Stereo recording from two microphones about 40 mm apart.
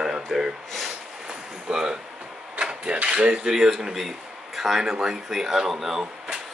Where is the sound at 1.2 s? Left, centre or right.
Centre.